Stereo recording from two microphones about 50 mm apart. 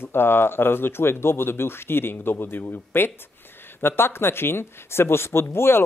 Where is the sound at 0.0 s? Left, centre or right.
Left.